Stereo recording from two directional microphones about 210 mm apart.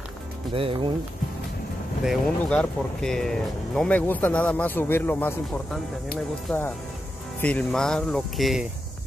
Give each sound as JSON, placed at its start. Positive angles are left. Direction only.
{"t": 0.5, "sound": "speech", "side_deg": -25}
{"t": 2.0, "sound": "speech", "side_deg": 5}